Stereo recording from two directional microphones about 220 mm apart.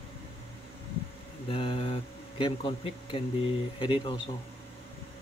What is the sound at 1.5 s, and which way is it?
Speech, 25° left (ahead or behind).